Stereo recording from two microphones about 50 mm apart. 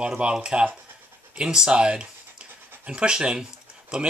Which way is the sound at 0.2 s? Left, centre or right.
Centre.